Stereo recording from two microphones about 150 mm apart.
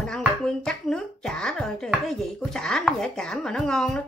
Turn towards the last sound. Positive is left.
turn(degrees=5)  # may be behind; listen again after turning